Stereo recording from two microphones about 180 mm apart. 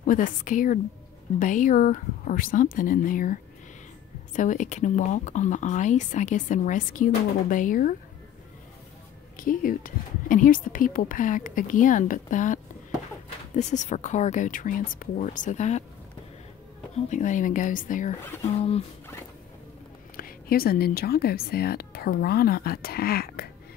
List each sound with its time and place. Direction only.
0.0 s speech: 45° left (ahead or behind)
9.4 s speech: 50° left (ahead or behind)
13.6 s speech: 40° left (ahead or behind)
16.9 s speech: 40° left (ahead or behind)
18.6 s speech: 35° left (ahead or behind)
20.2 s speech: 55° left (ahead or behind)